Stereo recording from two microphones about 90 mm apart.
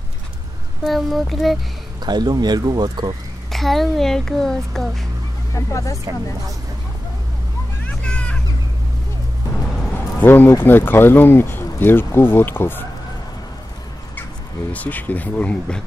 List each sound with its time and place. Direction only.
0.8 s a child's voice: centre (ahead or behind)
2.0 s speech: 50° right (ahead or behind)
3.5 s a child's voice: centre (ahead or behind)
5.5 s speech: 40° left (ahead or behind)
7.8 s vehicle: 10° left (ahead or behind)
10.1 s speech: 25° left (ahead or behind)
14.7 s speech: 20° left (ahead or behind)